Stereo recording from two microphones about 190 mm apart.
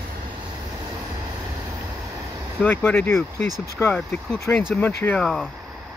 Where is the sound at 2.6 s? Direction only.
10° left (ahead or behind).